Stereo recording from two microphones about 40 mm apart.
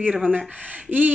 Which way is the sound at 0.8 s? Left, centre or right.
Right.